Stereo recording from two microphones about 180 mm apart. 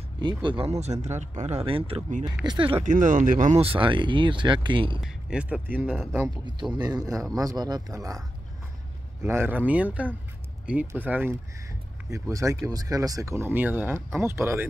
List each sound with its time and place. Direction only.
0.2 s speech: 25° right (ahead or behind)
2.8 s speech: 45° right (ahead or behind); by 5.0 s 30° right (ahead or behind)
5.0 s speech: 5° right (ahead or behind)
6.4 s speech: 25° right (ahead or behind)
9.2 s speech: 15° right (ahead or behind)